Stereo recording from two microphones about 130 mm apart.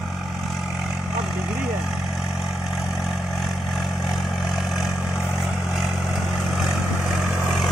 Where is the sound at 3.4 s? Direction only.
Centre (ahead or behind).